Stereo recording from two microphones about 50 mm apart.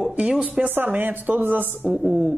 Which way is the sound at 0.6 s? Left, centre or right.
Right.